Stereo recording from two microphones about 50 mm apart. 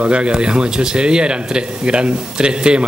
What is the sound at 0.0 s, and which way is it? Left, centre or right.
Speech, right.